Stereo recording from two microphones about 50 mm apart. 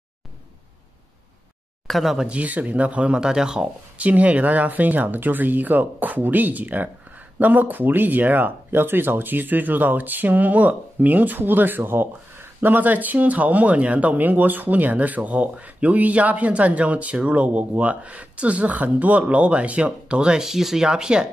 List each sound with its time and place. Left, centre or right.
1.9 s speech: centre
2.2 s speech: right
3.2 s speech: centre
4.0 s speech: right
20.4 s speech: centre